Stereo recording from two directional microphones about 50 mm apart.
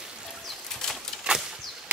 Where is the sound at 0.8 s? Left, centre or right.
Centre.